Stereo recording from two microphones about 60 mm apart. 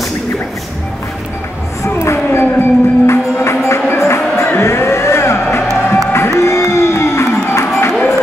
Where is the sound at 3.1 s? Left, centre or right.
Left.